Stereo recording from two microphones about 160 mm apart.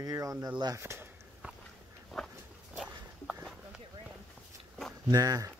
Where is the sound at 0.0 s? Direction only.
20° right (ahead or behind).